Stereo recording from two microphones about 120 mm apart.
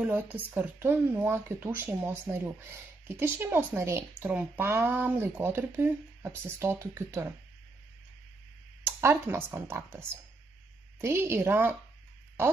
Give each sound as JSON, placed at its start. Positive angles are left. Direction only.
{"t": 0.0, "sound": "speech", "side_deg": -15}
{"t": 8.8, "sound": "speech", "side_deg": -20}